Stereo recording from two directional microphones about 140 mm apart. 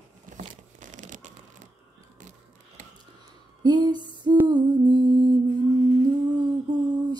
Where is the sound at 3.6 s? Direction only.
30° right (ahead or behind).